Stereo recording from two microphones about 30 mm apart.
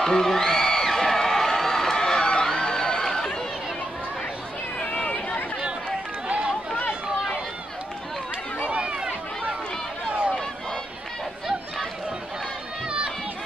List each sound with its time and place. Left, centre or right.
0.0 s a sound: centre
4.7 s run: left
8.8 s run: right